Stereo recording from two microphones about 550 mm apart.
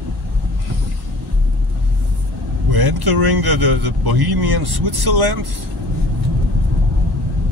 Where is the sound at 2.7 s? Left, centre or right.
Right.